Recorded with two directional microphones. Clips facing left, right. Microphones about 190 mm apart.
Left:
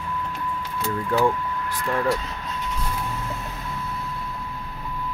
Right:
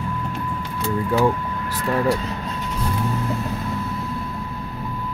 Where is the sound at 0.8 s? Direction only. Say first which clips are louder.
Right 3 dB; 10° right (ahead or behind).